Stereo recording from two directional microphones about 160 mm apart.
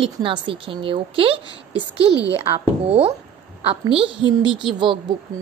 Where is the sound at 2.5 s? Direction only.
35° right (ahead or behind).